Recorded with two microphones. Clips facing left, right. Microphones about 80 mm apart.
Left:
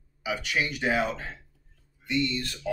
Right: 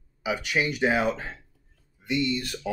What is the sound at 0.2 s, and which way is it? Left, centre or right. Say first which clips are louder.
Speech: right 2 dB; right.